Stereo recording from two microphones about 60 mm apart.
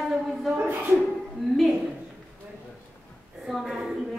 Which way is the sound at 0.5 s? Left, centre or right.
Right.